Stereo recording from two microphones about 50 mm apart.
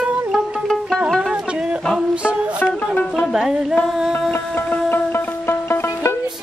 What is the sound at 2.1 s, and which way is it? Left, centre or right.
Music, right.